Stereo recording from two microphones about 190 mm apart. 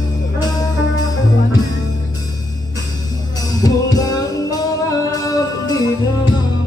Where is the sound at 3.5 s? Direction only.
20° left (ahead or behind).